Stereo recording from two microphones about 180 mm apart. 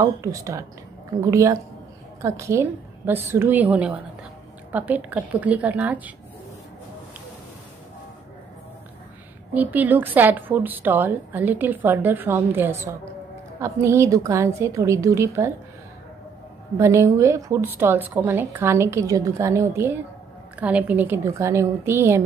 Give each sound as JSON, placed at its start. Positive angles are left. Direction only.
{"t": 0.0, "sound": "a woman's voice", "side_deg": -20}
{"t": 9.5, "sound": "a woman's voice", "side_deg": -10}
{"t": 16.7, "sound": "a woman's voice", "side_deg": -15}